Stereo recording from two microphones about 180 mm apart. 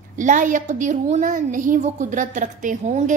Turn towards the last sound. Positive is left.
turn(degrees=-45)  # may be behind; listen again after turning